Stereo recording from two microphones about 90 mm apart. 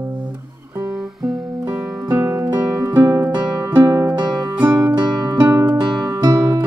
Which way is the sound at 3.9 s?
35° right (ahead or behind).